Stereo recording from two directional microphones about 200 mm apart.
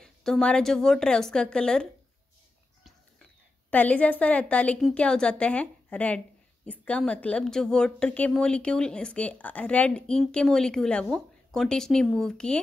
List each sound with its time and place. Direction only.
0.0 s a woman's voice: 5° left (ahead or behind)
3.7 s a woman's voice: 5° left (ahead or behind)